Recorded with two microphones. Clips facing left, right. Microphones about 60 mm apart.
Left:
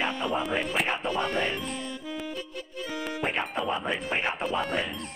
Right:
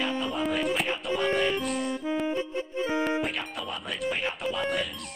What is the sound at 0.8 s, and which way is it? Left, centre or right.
Speech, left.